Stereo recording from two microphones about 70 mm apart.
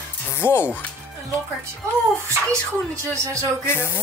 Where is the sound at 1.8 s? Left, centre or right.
Right.